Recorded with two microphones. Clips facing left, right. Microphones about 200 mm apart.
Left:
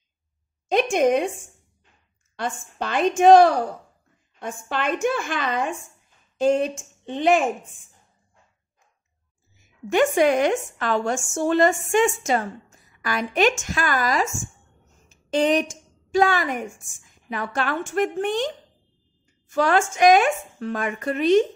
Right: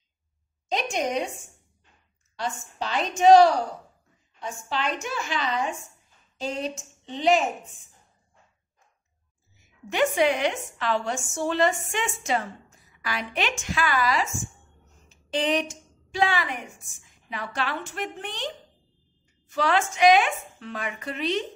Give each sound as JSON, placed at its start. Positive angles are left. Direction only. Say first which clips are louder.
{"t": 0.7, "sound": "a woman's voice", "louder": "left 9 dB", "side_deg": 55}
{"t": 2.3, "sound": "a woman's voice", "louder": "left 3 dB", "side_deg": 55}
{"t": 9.8, "sound": "a woman's voice", "louder": "left 4 dB", "side_deg": 50}
{"t": 19.5, "sound": "a woman's voice", "louder": "left 4 dB", "side_deg": 45}